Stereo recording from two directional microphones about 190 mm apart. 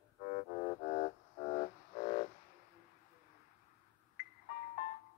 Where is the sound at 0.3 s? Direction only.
35° left (ahead or behind).